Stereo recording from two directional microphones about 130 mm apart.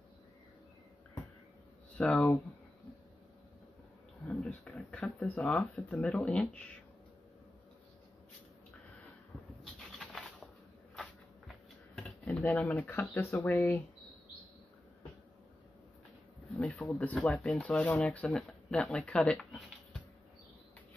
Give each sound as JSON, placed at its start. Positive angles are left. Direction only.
{"t": 2.0, "sound": "speech", "side_deg": 5}
{"t": 4.3, "sound": "speech", "side_deg": 10}
{"t": 9.8, "sound": "a sound", "side_deg": 0}
{"t": 13.1, "sound": "speech", "side_deg": 20}
{"t": 16.5, "sound": "speech", "side_deg": 5}